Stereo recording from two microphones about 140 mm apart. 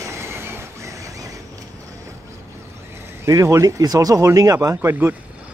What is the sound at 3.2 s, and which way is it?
A man's voice, 20° right (ahead or behind).